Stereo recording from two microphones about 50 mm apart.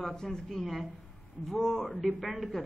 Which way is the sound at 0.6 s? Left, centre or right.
Centre.